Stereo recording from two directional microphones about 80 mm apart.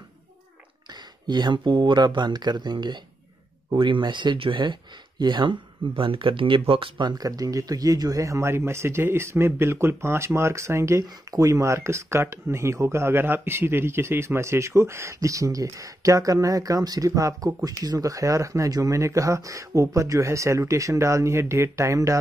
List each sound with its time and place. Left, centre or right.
1.2 s speech: right
3.7 s speech: right
5.2 s speech: right
7.2 s speech: right